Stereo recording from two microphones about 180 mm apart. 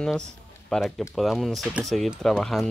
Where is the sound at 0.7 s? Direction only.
Centre (ahead or behind).